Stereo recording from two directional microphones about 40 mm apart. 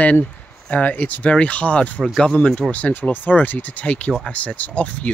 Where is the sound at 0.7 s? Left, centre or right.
Left.